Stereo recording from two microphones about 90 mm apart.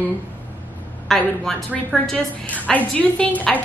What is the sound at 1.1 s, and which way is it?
A woman's voice, 5° left (ahead or behind).